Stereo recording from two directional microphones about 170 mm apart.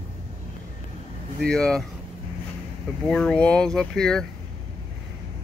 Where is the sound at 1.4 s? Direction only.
5° left (ahead or behind).